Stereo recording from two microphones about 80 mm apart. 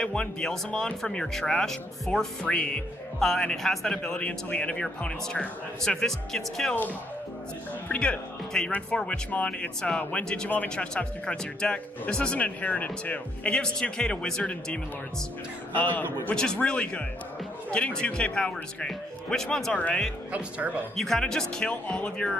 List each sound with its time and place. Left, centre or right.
0.0 s speech: centre
7.9 s a man's voice: centre
20.3 s speech: centre
20.9 s speech: centre